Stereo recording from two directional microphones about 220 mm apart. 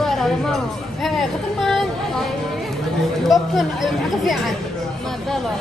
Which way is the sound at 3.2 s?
Centre (ahead or behind).